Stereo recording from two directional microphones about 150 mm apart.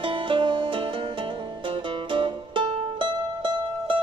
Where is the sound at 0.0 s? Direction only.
35° right (ahead or behind).